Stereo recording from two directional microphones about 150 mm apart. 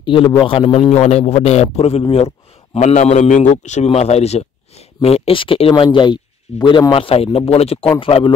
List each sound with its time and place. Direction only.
0.0 s a man's voice: 35° left (ahead or behind)